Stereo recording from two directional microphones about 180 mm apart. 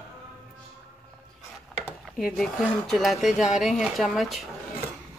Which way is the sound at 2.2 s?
Centre (ahead or behind).